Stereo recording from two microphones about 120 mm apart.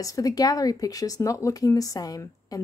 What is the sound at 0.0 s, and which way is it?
Speech, 30° left (ahead or behind).